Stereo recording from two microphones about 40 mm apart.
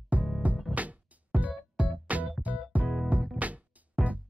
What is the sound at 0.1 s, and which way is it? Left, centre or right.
Music, right.